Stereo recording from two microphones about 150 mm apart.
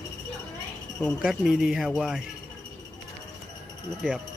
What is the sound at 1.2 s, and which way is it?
Speech, 5° right (ahead or behind).